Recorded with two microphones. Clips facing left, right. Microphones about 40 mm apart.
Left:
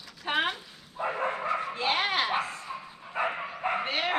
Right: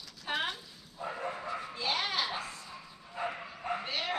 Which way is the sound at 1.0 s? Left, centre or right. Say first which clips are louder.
Left 8 dB; left.